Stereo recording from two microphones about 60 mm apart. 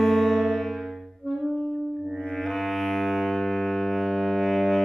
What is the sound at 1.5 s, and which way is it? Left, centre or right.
Saxophone, left.